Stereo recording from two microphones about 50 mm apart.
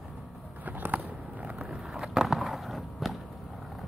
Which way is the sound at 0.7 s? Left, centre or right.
Right.